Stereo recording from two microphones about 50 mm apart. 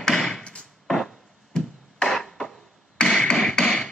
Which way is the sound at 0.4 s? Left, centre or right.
Centre.